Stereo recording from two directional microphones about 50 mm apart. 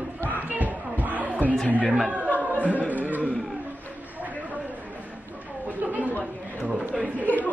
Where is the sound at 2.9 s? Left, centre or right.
Right.